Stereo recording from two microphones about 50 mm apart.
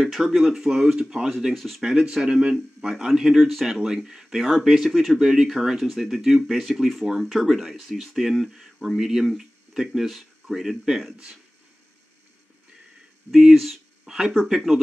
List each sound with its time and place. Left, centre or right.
0.0 s speech: centre
1.3 s speech: centre
1.8 s speech: centre
13.3 s speech: centre